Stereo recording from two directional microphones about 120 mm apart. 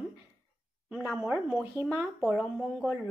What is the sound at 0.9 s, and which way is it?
Speech, 10° right (ahead or behind).